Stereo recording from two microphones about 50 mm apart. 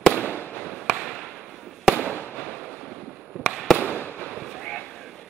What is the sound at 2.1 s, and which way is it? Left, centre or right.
Fireworks, left.